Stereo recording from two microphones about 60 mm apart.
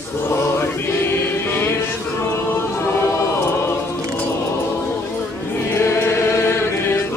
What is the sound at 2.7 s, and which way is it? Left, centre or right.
Choir, left.